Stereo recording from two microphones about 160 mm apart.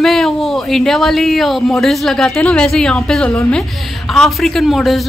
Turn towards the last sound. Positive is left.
turn(degrees=0)  # may be behind; listen again after turning